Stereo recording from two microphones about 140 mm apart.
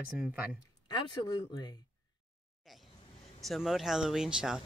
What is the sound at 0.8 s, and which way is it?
Speech, 35° left (ahead or behind).